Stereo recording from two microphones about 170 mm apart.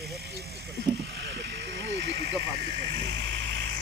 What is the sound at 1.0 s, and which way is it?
Vehicle, 90° right.